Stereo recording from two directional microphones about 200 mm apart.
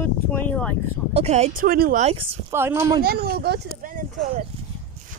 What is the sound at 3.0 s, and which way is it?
Speech, 50° right (ahead or behind).